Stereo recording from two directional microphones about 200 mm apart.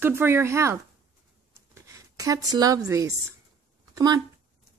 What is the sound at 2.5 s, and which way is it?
A woman's voice, 20° right (ahead or behind).